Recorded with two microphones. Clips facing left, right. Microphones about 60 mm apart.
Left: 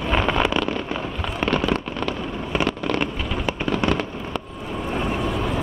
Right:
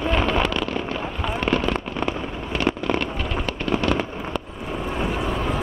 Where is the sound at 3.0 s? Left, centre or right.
Centre.